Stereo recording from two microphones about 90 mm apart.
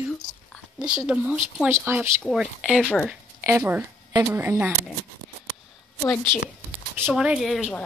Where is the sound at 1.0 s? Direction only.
15° right (ahead or behind).